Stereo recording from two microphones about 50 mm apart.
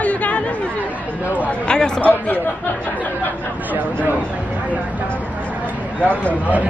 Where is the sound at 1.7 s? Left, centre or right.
Left.